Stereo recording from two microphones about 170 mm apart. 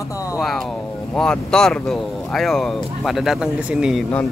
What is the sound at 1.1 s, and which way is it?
Speech, 5° left (ahead or behind).